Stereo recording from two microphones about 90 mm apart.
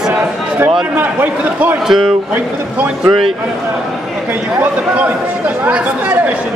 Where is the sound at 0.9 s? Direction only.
20° right (ahead or behind).